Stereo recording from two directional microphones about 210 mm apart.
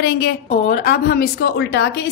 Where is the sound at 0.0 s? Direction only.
55° left (ahead or behind).